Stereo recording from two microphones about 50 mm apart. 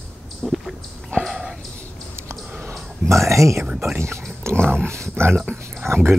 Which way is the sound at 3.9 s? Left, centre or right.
Right.